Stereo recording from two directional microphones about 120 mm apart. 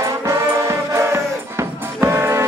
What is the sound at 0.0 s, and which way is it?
Music, 25° right (ahead or behind).